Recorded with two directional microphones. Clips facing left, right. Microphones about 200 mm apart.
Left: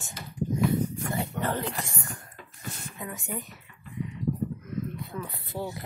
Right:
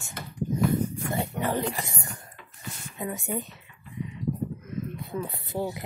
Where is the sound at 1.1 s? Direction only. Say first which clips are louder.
Right 3 dB; 15° right (ahead or behind).